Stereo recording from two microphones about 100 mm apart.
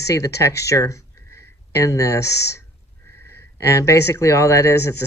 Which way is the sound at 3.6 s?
30° left (ahead or behind).